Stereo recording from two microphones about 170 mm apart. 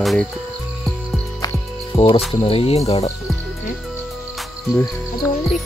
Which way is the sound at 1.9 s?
Centre (ahead or behind).